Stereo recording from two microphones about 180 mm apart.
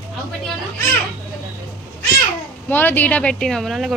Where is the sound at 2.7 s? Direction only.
10° left (ahead or behind).